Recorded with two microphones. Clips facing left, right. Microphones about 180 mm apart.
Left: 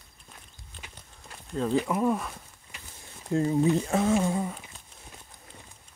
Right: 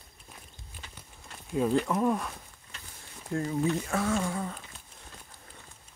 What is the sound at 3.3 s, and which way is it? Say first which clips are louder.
Speech: left 5 dB; 25° left (ahead or behind).